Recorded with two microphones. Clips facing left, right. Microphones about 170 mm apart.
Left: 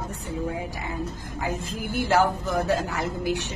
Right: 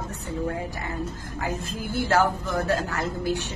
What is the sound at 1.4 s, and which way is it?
Speech, 15° left (ahead or behind).